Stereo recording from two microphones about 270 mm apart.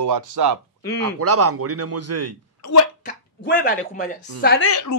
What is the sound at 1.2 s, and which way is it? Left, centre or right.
A man's voice, right.